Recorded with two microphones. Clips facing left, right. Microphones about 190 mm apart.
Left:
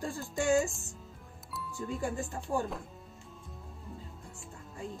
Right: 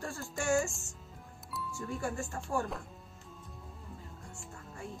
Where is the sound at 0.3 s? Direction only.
15° left (ahead or behind).